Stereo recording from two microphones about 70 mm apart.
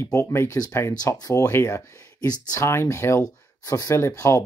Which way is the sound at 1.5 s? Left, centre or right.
Left.